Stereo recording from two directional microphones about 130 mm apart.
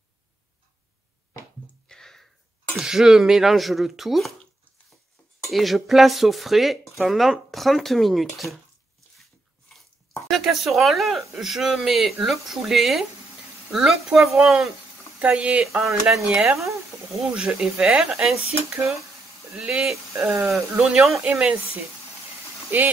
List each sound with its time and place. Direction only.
1.9 s a sound: 5° left (ahead or behind)
2.7 s speech: 5° right (ahead or behind)
5.5 s speech: centre (ahead or behind)
10.3 s speech: centre (ahead or behind)
18.7 s speech: 20° right (ahead or behind)
19.5 s speech: 5° right (ahead or behind)
22.7 s speech: 15° right (ahead or behind)